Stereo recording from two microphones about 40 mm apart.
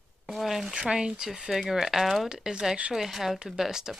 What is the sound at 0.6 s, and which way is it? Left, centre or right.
Speech, right.